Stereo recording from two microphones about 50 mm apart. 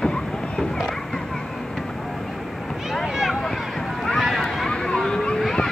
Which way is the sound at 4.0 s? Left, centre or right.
Centre.